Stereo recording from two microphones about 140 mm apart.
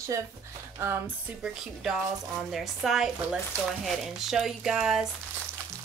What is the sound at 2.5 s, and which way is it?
Speech, centre (ahead or behind).